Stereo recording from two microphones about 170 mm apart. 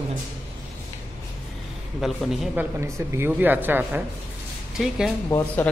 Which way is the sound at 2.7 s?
15° right (ahead or behind).